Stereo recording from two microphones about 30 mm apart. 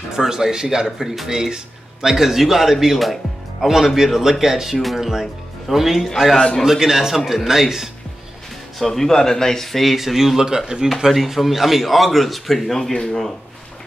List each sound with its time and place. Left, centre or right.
0.1 s speech: centre
0.9 s speech: centre
6.3 s speech: centre
6.6 s speech: centre
8.8 s speech: centre
9.9 s speech: centre
10.4 s speech: right
11.1 s speech: centre
12.9 s speech: left